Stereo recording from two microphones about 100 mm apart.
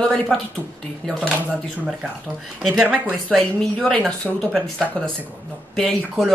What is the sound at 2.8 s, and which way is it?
Speech, 15° right (ahead or behind).